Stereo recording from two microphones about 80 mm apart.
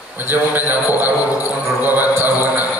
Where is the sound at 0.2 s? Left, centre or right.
Right.